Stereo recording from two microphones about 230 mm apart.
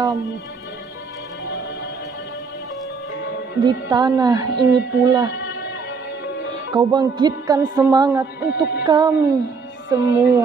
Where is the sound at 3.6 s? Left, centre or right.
Centre.